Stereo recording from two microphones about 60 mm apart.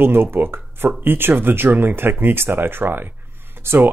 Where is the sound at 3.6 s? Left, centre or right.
Right.